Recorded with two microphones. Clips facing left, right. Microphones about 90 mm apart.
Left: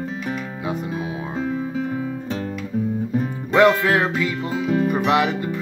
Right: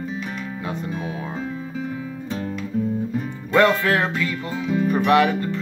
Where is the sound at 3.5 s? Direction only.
10° left (ahead or behind).